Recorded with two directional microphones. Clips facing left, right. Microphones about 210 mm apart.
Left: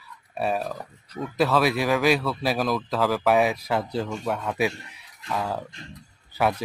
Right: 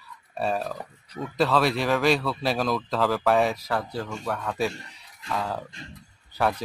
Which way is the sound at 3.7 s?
20° left (ahead or behind).